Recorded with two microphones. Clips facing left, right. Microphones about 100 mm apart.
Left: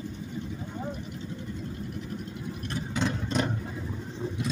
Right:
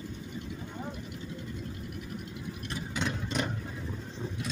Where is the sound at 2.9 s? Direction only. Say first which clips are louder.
Left 4 dB; 30° left (ahead or behind).